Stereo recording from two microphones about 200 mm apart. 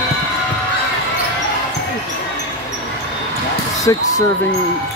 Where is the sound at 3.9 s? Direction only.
15° left (ahead or behind).